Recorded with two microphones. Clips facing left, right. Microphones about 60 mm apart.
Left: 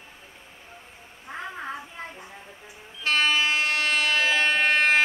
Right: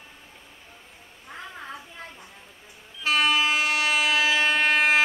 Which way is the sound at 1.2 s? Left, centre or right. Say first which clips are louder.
Left 5 dB; left.